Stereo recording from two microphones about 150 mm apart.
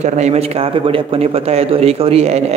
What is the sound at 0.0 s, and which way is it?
A man's voice, 50° right (ahead or behind).